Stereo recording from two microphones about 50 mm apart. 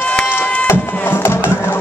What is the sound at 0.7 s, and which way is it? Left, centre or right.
Music, left.